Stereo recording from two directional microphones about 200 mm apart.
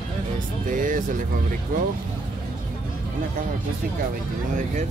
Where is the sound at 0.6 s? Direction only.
40° right (ahead or behind).